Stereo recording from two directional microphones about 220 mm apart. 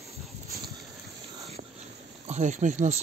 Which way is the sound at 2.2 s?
30° right (ahead or behind).